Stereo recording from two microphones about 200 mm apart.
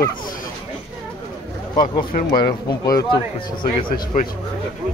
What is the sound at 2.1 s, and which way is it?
Speech, 45° left (ahead or behind).